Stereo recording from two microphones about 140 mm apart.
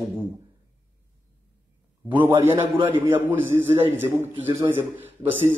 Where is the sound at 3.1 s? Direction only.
15° right (ahead or behind).